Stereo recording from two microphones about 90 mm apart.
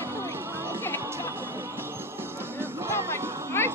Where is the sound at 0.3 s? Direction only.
25° right (ahead or behind).